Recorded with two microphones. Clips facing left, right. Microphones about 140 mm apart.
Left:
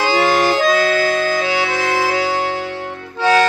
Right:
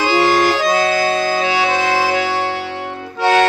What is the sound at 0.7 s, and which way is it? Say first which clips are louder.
Music: even; 25° right (ahead or behind).